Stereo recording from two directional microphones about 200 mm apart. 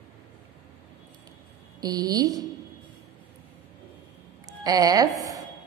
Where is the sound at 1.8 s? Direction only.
20° right (ahead or behind).